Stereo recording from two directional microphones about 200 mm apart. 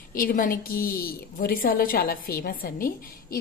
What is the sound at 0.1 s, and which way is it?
A woman's voice, 45° left (ahead or behind).